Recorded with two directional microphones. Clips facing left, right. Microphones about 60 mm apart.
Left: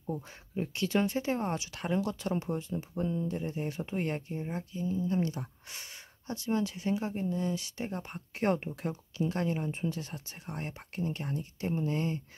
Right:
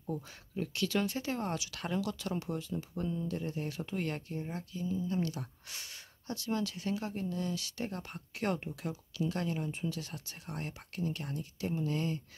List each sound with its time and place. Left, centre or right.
0.1 s speech: left